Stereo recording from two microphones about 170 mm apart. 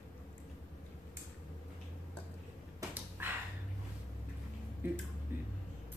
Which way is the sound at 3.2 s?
10° right (ahead or behind).